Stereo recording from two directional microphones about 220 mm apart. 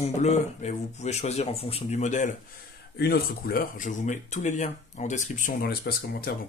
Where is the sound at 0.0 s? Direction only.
30° left (ahead or behind).